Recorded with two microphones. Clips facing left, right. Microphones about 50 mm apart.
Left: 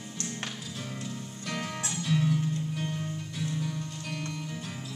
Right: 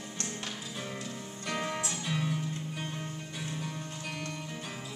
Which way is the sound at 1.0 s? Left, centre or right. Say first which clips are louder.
Left 1 dB; centre.